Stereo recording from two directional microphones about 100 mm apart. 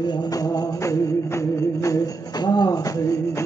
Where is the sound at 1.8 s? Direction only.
35° left (ahead or behind).